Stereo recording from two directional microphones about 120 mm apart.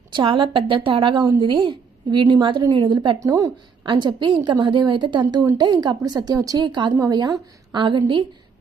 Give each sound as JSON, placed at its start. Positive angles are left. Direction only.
{"t": 0.1, "sound": "a woman's voice", "side_deg": -45}